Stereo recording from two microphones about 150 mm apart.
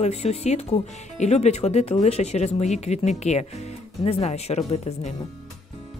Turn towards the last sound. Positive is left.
turn(degrees=45)  # may be behind; listen again after turning